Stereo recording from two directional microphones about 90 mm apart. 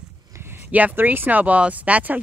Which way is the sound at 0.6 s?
15° right (ahead or behind).